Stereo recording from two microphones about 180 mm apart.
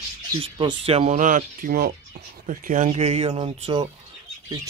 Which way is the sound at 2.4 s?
45° right (ahead or behind).